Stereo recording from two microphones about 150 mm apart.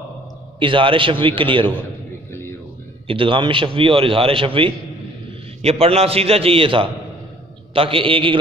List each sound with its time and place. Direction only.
0.6 s a man's voice: 35° right (ahead or behind)
3.1 s a man's voice: 35° right (ahead or behind)